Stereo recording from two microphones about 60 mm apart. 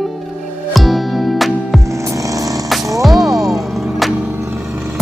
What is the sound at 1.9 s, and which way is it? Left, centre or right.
Hum, right.